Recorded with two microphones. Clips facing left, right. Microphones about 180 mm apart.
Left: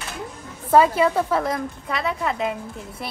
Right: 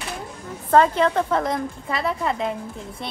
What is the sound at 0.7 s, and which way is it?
A woman's voice, 10° left (ahead or behind).